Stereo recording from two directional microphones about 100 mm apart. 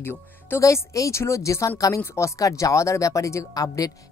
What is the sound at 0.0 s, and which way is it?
Speech, 25° left (ahead or behind).